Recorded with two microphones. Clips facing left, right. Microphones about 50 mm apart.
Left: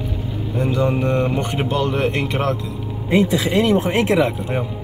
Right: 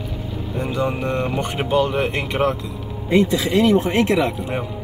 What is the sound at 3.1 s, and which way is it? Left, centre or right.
Speech, left.